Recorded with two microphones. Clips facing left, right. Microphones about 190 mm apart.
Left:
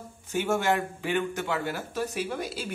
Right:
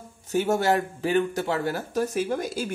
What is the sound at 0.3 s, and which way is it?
Speech, 40° right (ahead or behind).